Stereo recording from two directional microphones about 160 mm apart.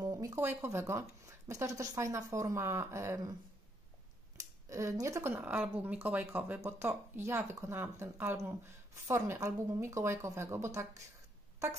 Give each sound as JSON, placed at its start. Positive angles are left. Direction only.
{"t": 0.0, "sound": "speech", "side_deg": -25}
{"t": 4.6, "sound": "speech", "side_deg": -20}